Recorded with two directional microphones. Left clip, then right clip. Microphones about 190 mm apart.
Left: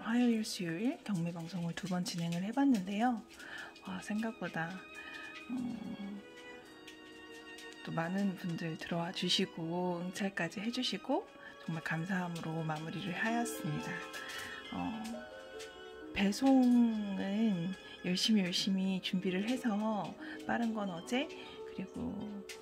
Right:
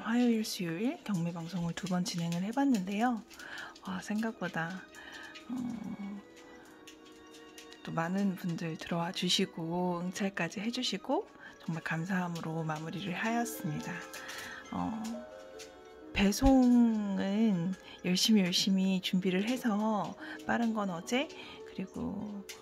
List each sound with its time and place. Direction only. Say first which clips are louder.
0.0 s speech: right 3 dB; 10° right (ahead or behind)
7.8 s speech: right 3 dB; 10° right (ahead or behind)
14.7 s speech: right 5 dB; 20° right (ahead or behind)
16.1 s speech: right 3 dB; 20° right (ahead or behind)